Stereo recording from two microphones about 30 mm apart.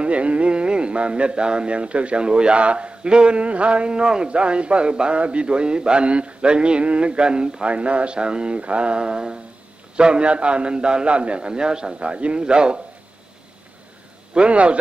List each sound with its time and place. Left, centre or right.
0.0 s speech: right
8.5 s speech: right
9.0 s a sound: right
9.9 s speech: right
14.3 s speech: right